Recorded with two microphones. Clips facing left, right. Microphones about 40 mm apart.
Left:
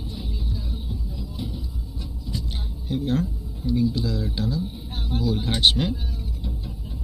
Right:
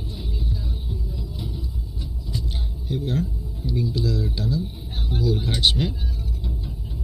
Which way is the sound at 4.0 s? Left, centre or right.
Left.